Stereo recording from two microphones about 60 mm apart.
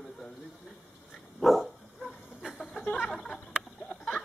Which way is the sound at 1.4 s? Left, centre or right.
Centre.